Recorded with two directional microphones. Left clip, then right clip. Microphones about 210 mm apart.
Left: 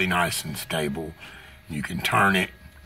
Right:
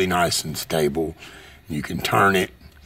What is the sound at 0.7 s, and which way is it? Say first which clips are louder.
Speech: right 8 dB; 55° right (ahead or behind).